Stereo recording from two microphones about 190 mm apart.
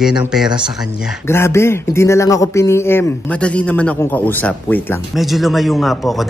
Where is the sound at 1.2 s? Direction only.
15° left (ahead or behind).